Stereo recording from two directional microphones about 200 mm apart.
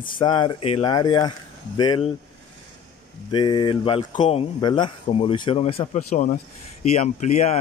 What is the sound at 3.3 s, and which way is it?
A man's voice, 25° left (ahead or behind).